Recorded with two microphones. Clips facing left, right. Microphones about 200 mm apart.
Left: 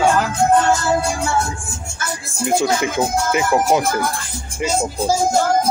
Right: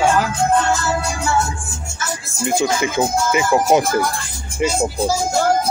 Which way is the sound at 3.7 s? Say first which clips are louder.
Right 4 dB; 15° right (ahead or behind).